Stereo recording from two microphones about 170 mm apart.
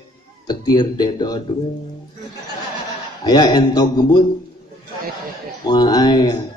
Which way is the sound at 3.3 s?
25° left (ahead or behind).